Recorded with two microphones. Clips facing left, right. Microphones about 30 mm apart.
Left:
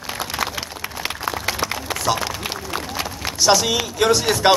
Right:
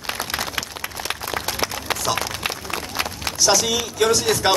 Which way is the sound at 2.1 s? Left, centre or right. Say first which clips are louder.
Left 3 dB; centre.